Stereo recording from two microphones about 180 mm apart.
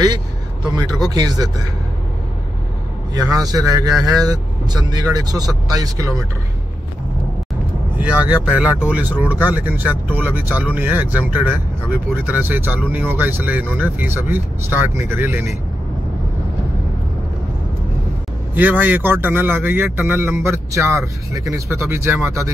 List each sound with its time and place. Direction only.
0.7 s speech: 20° right (ahead or behind)
3.2 s speech: 20° right (ahead or behind)
8.0 s a man's voice: 5° right (ahead or behind)
18.5 s a man's voice: 10° right (ahead or behind)